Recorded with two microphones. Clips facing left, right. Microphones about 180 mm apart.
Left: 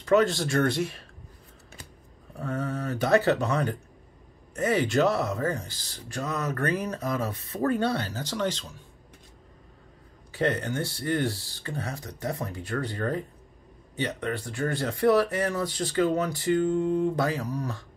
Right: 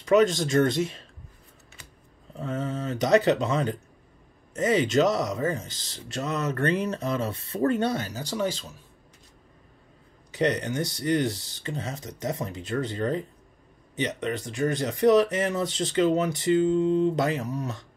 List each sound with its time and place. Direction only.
0.0 s speech: 15° right (ahead or behind)
2.3 s speech: 20° right (ahead or behind)
10.3 s speech: 15° right (ahead or behind)